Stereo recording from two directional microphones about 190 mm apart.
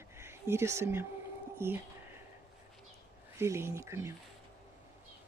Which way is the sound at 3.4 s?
15° right (ahead or behind).